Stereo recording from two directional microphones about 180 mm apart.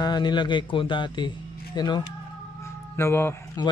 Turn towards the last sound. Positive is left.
turn(degrees=20)  # may be behind; listen again after turning